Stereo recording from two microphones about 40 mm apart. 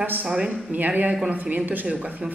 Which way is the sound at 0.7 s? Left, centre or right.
Right.